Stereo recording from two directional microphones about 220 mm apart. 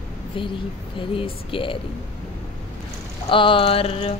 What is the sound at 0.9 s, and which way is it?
Speech, 25° left (ahead or behind).